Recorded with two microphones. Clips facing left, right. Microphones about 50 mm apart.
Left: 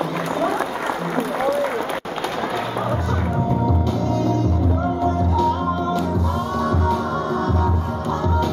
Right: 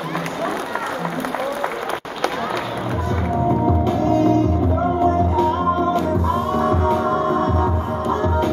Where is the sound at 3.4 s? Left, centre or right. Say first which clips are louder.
Right 5 dB; right.